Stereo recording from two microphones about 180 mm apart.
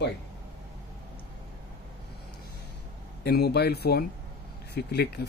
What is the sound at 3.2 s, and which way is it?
Speech, 60° left (ahead or behind).